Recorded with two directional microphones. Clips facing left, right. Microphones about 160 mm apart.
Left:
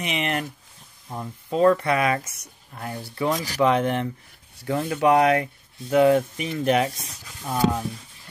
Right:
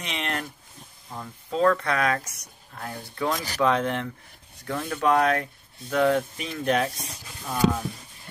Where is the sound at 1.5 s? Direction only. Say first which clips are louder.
Left 4 dB; 15° left (ahead or behind).